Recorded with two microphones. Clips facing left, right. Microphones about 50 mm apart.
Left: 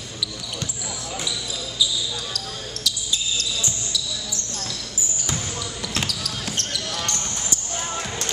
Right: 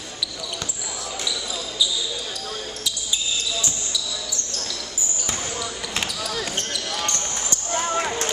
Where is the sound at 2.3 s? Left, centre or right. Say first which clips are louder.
Right 1 dB; centre.